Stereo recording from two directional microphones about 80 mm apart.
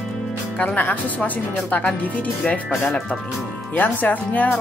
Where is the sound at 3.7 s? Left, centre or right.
Left.